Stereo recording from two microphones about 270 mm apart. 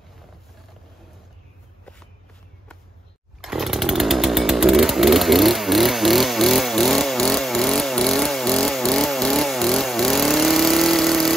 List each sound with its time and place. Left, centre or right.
3.3 s chainsaw: centre